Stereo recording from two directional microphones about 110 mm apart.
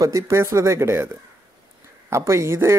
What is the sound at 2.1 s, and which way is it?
Speech, 25° right (ahead or behind).